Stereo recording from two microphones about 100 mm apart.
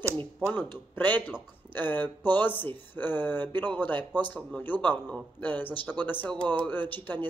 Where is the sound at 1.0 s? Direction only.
20° left (ahead or behind).